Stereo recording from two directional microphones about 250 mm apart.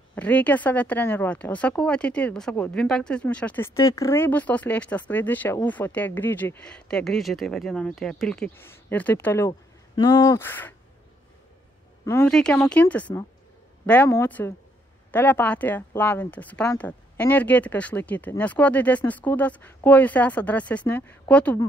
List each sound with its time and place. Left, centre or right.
0.1 s speech: centre
12.1 s speech: centre